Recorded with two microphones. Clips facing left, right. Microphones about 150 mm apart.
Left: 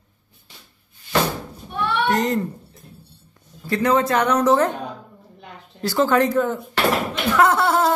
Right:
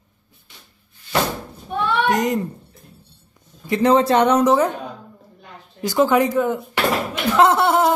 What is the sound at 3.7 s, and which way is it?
Speech, 30° right (ahead or behind).